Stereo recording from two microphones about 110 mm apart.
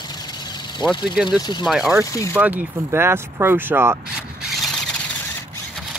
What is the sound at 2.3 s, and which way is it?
Speech, 15° right (ahead or behind).